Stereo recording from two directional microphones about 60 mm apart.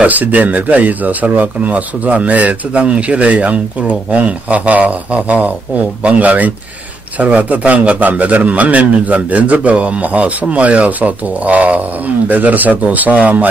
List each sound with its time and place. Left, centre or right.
0.0 s speech: right